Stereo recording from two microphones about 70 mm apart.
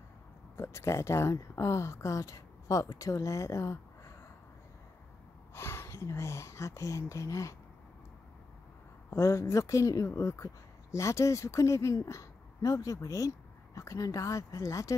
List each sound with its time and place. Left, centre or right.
0.6 s speech: left
5.5 s speech: left
9.1 s speech: left